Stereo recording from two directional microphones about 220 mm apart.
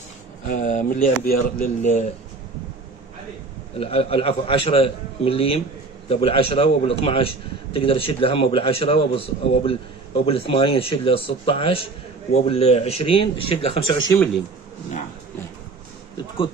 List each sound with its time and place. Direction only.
0.5 s speech: 35° left (ahead or behind)
3.7 s a man's voice: 25° left (ahead or behind)
14.1 s speech: 5° left (ahead or behind)